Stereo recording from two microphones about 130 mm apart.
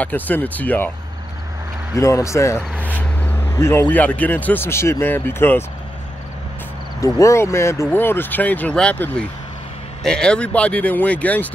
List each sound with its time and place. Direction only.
0.0 s speech: 10° left (ahead or behind)
2.0 s speech: 25° left (ahead or behind)
2.8 s speech: 10° left (ahead or behind)
7.0 s speech: 25° left (ahead or behind)